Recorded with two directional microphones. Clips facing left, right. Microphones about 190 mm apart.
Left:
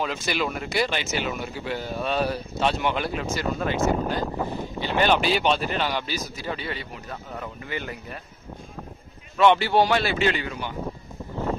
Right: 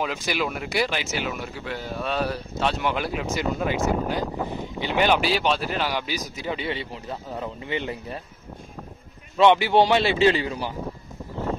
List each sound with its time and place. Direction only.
0.0 s speech: 10° right (ahead or behind); by 8.2 s 25° right (ahead or behind)
9.4 s a man's voice: 20° right (ahead or behind)